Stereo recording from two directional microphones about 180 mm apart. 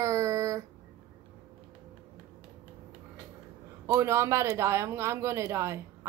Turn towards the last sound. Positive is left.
turn(degrees=-15)  # may be behind; listen again after turning